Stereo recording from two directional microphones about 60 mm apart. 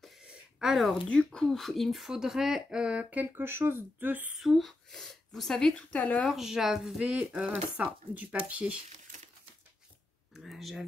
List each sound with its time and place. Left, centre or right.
0.2 s a sound: centre
1.0 s speech: centre
1.5 s speech: centre; by 3.3 s right
3.3 s speech: right
4.4 s speech: centre
5.8 s speech: left
6.2 s speech: centre; by 8.7 s right
10.3 s speech: centre